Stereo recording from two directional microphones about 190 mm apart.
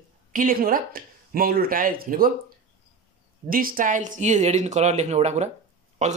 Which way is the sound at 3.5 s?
50° right (ahead or behind).